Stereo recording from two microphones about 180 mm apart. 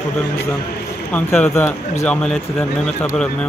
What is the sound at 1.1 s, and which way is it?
Speech, 10° left (ahead or behind).